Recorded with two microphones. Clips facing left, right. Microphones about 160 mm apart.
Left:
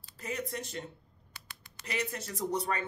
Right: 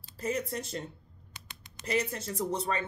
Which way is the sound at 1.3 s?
20° right (ahead or behind).